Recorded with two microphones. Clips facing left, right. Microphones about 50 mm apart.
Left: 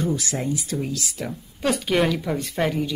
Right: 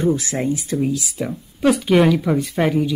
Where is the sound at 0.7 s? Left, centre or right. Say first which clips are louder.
Right 7 dB; centre.